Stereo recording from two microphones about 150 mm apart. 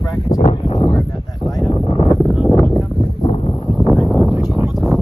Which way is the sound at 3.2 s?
45° left (ahead or behind).